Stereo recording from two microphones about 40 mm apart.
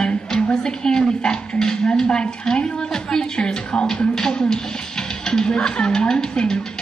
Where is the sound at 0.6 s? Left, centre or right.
Centre.